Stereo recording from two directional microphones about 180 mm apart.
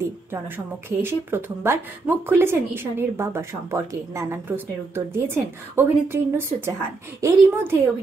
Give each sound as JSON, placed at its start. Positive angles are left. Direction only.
{"t": 0.8, "sound": "speech", "side_deg": -15}